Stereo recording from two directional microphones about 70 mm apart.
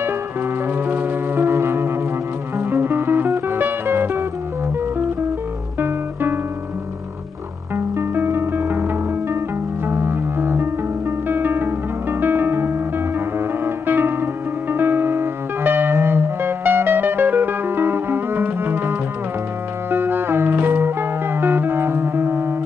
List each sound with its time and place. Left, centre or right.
0.8 s music: right
5.8 s guitar: right
7.7 s music: right
9.8 s music: right